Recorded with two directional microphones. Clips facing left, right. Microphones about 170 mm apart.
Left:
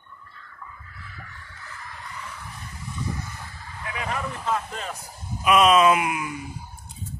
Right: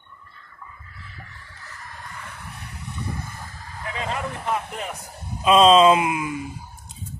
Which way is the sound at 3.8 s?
25° right (ahead or behind).